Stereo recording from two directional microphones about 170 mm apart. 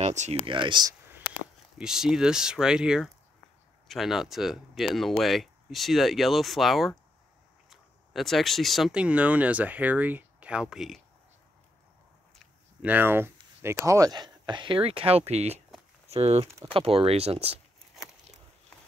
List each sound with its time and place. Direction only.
0.0 s speech: 40° right (ahead or behind)
0.5 s speech: 30° right (ahead or behind)
1.8 s speech: 5° right (ahead or behind)
12.8 s speech: 10° right (ahead or behind); by 17.6 s 35° right (ahead or behind)
18.7 s horse: 5° left (ahead or behind)